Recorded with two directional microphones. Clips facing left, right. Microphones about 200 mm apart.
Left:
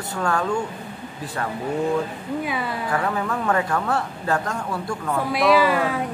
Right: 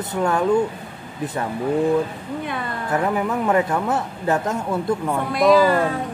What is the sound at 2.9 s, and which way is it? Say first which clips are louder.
Speech: right 5 dB; 20° right (ahead or behind).